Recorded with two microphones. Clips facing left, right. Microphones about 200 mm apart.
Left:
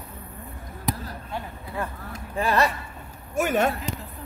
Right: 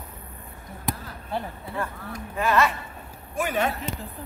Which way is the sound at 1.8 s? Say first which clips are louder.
Even; 30° left (ahead or behind).